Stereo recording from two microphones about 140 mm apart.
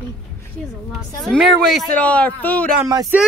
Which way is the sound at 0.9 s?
Centre (ahead or behind).